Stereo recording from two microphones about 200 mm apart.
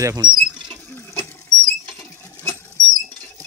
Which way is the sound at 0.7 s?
10° left (ahead or behind).